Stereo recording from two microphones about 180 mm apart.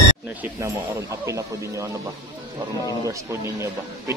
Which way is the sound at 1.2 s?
15° right (ahead or behind).